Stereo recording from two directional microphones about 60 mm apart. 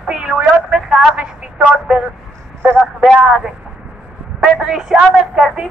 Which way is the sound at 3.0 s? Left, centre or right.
Centre.